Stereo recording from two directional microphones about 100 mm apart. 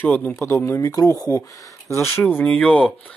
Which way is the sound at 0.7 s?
35° left (ahead or behind).